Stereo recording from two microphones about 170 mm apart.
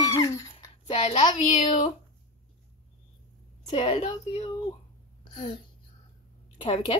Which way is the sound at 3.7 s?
35° left (ahead or behind).